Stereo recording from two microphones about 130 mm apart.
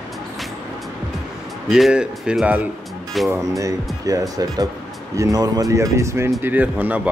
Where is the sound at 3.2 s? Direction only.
25° right (ahead or behind).